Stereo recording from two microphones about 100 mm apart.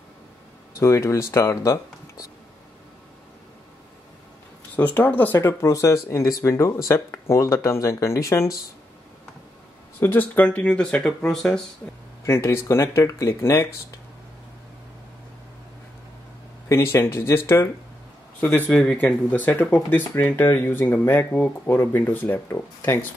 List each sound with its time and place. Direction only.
0.7 s speech: 30° left (ahead or behind)
4.7 s speech: 15° left (ahead or behind)
9.9 s speech: 20° left (ahead or behind)
12.4 s speech: 25° left (ahead or behind)
16.6 s speech: 25° left (ahead or behind)